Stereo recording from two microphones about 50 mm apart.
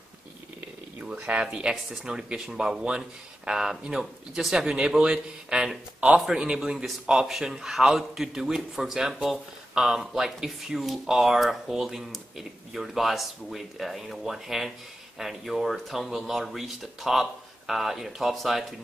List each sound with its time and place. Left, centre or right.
1.0 s a man's voice: right; by 18.7 s centre